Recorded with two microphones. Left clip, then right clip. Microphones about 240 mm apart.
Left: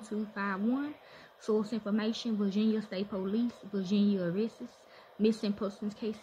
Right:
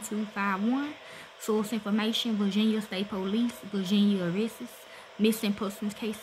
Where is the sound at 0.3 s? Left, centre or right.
Right.